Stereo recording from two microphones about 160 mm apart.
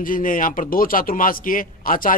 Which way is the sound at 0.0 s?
60° left (ahead or behind).